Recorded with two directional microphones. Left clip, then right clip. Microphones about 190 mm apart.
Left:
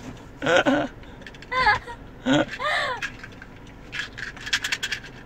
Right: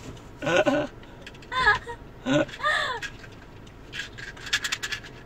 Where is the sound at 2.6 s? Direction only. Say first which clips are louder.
Left 1 dB; 10° left (ahead or behind).